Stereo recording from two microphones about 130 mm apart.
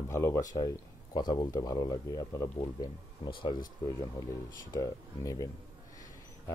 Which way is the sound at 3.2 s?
45° left (ahead or behind).